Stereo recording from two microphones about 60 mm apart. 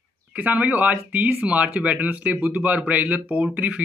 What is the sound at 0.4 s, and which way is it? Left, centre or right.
Speech, right.